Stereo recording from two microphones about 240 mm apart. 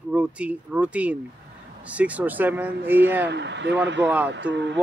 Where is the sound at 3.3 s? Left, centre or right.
Right.